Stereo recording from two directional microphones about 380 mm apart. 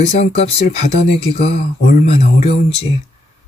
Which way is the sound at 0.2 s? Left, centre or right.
Centre.